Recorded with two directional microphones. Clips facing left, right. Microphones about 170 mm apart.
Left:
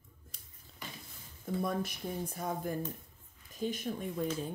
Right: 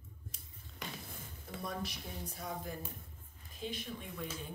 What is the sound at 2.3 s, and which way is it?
A woman's voice, 50° left (ahead or behind).